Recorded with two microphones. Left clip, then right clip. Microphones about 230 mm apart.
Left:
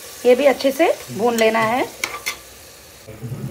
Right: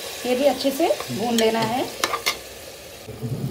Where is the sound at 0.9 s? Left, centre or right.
Centre.